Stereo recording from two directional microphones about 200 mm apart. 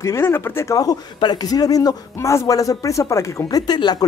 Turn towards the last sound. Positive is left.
turn(degrees=20)  # may be behind; listen again after turning